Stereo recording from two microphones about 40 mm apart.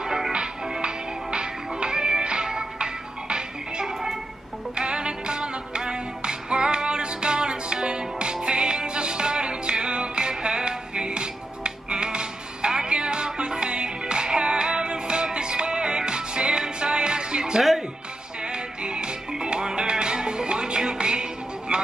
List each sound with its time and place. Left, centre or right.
0.0 s music: centre
3.8 s a sound: centre
4.7 s music: right